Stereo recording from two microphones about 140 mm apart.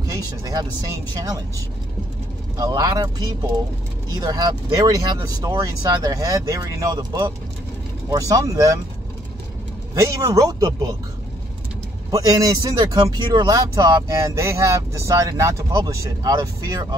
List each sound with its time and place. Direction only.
0.0 s speech: 25° right (ahead or behind)
2.5 s speech: 30° right (ahead or behind)
9.9 s speech: 20° right (ahead or behind)
12.1 s speech: 25° right (ahead or behind)